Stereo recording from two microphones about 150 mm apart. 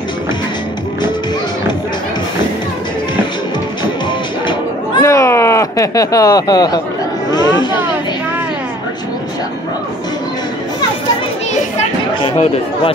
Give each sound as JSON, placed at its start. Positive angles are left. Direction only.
{"t": 5.0, "sound": "a sound", "side_deg": 20}
{"t": 7.2, "sound": "speech", "side_deg": 25}
{"t": 12.2, "sound": "speech", "side_deg": 40}